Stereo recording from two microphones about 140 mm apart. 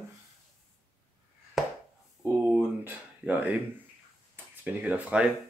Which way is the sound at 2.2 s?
10° right (ahead or behind).